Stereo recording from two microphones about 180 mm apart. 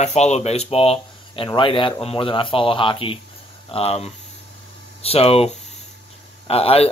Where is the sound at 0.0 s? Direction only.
40° left (ahead or behind).